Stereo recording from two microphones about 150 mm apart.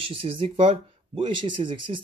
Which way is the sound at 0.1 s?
35° right (ahead or behind).